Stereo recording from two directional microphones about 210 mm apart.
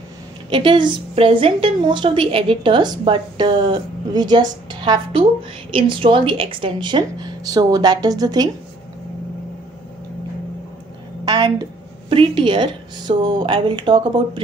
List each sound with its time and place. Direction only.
0.5 s a woman's voice: 25° right (ahead or behind)
11.2 s a sound: 20° right (ahead or behind)
12.1 s a woman's voice: 25° right (ahead or behind)